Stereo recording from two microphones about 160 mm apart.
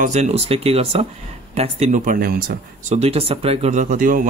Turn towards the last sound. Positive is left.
turn(degrees=-55)  # may be behind; listen again after turning